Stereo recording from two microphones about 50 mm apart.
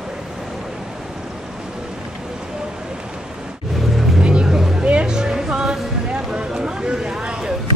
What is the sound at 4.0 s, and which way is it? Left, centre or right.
Vehicle, centre.